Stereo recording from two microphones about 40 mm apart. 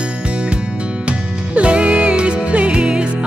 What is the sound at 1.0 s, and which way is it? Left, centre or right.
Music, right.